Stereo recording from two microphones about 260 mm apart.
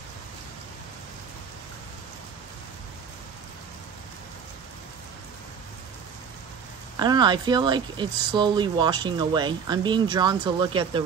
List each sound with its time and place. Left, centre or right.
7.0 s speech: centre